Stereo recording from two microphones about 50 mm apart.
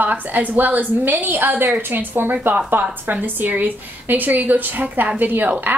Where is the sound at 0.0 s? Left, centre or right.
Right.